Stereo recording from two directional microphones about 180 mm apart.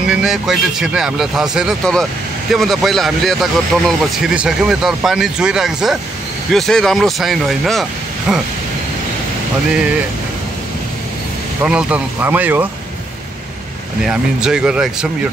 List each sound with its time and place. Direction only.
0.1 s speech: 5° right (ahead or behind)
11.6 s speech: 5° right (ahead or behind)
14.0 s speech: 5° right (ahead or behind)